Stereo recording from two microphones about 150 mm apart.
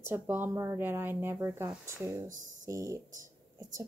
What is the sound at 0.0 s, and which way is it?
A woman's voice, 15° right (ahead or behind).